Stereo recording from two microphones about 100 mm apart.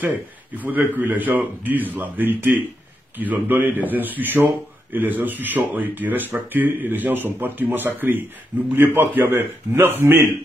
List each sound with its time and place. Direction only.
0.6 s a man's voice: 15° right (ahead or behind)